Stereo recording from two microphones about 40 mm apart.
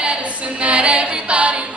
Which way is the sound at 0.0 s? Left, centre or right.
Right.